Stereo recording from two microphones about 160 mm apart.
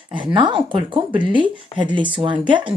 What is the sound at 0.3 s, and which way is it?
Speech, 30° right (ahead or behind).